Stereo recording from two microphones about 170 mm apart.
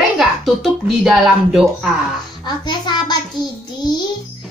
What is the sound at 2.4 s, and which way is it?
Speech, 25° left (ahead or behind).